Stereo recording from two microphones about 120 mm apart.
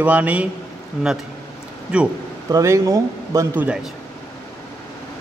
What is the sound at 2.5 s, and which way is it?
A man's voice, 25° right (ahead or behind).